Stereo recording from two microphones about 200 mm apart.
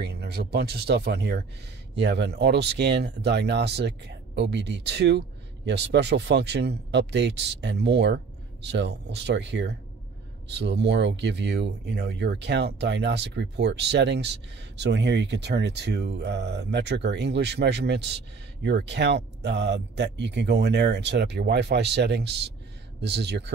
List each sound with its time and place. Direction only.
0.0 s speech: 55° right (ahead or behind)